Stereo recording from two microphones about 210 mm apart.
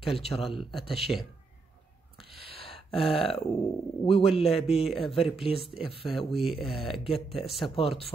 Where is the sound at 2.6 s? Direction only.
25° left (ahead or behind).